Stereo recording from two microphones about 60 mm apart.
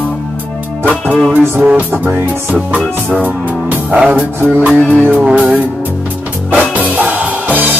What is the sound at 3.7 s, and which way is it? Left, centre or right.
Music, right.